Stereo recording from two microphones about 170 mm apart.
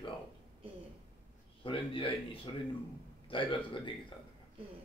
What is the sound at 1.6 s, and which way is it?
Speech, 30° left (ahead or behind).